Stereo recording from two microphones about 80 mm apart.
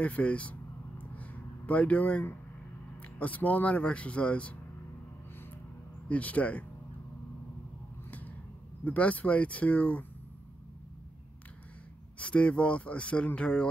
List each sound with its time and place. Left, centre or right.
0.0 s a sound: centre
3.2 s speech: centre
6.0 s speech: centre
8.8 s speech: centre
12.2 s speech: centre